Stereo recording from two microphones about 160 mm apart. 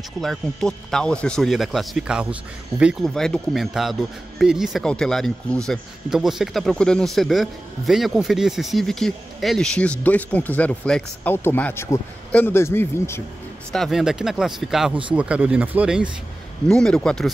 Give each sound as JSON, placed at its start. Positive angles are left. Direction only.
{"t": 0.2, "sound": "speech", "side_deg": 0}
{"t": 13.7, "sound": "speech", "side_deg": 0}
{"t": 16.6, "sound": "speech", "side_deg": 5}